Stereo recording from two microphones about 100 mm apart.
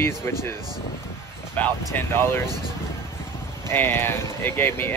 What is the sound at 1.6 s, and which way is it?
Speech, 20° left (ahead or behind).